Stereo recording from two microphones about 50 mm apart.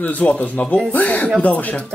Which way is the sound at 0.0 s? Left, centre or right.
Left.